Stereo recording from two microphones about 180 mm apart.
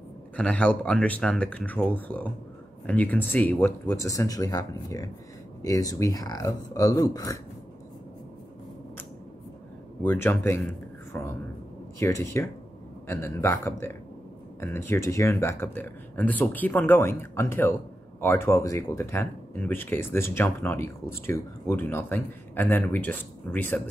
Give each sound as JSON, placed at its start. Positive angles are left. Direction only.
{"t": 0.4, "sound": "speech", "side_deg": 5}
{"t": 10.0, "sound": "speech", "side_deg": 10}
{"t": 11.1, "sound": "a sound", "side_deg": 10}
{"t": 12.0, "sound": "speech", "side_deg": 15}